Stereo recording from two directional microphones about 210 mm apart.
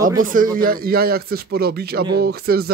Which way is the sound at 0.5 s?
45° right (ahead or behind).